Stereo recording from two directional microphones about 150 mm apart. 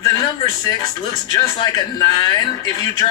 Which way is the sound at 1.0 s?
25° left (ahead or behind).